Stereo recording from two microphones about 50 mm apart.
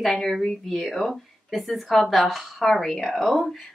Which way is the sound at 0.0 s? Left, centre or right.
Centre.